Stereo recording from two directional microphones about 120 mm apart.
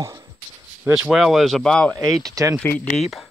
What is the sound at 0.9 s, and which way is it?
Speech, 5° right (ahead or behind).